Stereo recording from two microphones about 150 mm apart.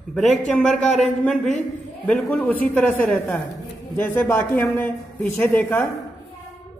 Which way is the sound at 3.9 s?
15° left (ahead or behind).